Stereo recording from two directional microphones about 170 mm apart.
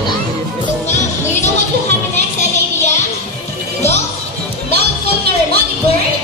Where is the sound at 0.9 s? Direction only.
45° left (ahead or behind).